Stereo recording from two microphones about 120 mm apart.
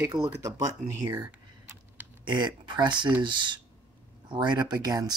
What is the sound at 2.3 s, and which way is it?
Speech, 40° right (ahead or behind).